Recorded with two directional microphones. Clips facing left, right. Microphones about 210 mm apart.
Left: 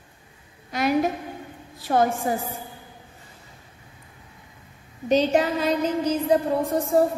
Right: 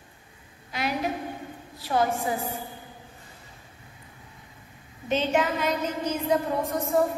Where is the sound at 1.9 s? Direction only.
50° left (ahead or behind).